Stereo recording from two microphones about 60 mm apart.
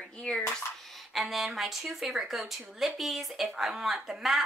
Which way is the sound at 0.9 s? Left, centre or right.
Centre.